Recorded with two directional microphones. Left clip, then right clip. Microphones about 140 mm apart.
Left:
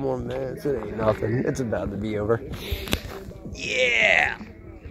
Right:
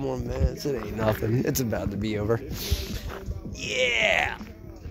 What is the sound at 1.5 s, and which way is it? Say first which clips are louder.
Speech: left 2 dB; 25° right (ahead or behind).